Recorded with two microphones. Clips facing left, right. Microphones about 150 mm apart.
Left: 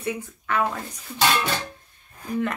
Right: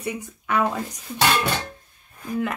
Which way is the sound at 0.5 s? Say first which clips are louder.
Right 2 dB; 15° right (ahead or behind).